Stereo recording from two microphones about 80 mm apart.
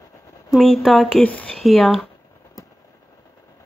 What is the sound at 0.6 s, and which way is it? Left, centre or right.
Speech, centre.